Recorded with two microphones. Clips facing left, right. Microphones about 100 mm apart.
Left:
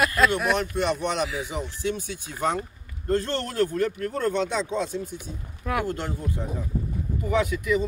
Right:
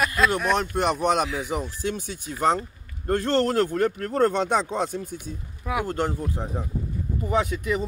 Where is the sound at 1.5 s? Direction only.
50° right (ahead or behind).